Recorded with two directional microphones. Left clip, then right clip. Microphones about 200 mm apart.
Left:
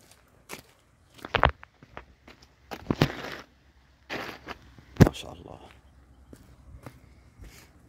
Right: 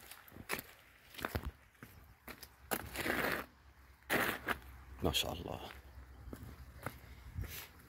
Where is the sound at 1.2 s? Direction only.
20° right (ahead or behind).